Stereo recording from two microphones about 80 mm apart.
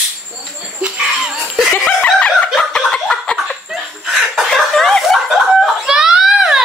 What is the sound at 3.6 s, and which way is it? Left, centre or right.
Chuckle, centre.